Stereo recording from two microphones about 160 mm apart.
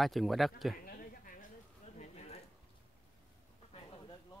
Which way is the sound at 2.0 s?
40° left (ahead or behind).